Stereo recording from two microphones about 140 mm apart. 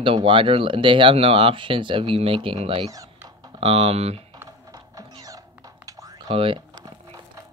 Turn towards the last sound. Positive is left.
turn(degrees=-40)  # may be behind; listen again after turning